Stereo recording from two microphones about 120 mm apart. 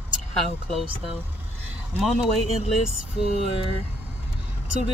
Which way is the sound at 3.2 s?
60° right (ahead or behind).